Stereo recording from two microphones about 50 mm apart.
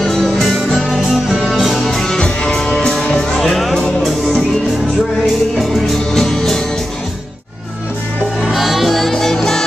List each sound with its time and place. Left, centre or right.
0.0 s music: centre
2.1 s music: centre
3.2 s music: centre
6.1 s music: centre
8.5 s music: centre